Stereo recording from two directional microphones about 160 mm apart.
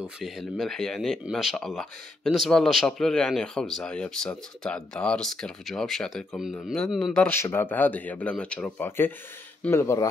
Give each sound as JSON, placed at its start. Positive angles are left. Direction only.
{"t": 0.0, "sound": "speech", "side_deg": 0}
{"t": 7.2, "sound": "speech", "side_deg": 15}